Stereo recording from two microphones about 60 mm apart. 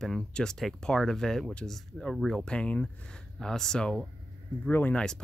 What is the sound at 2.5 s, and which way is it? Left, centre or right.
Speech, centre.